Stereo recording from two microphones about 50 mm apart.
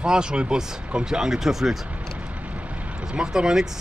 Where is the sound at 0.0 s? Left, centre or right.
Centre.